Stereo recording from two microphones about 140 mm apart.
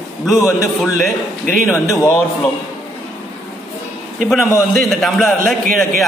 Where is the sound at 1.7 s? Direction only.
20° left (ahead or behind).